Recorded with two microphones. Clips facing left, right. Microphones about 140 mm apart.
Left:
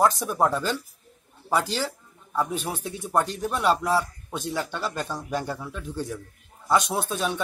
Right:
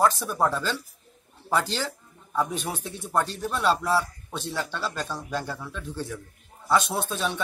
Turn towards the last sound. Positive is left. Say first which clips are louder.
# left 1 dB
turn(degrees=10)  # may be behind; listen again after turning